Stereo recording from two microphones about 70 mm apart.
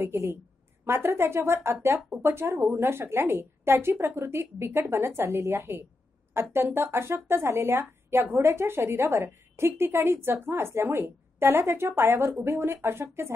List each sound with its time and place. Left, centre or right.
0.0 s a woman's voice: right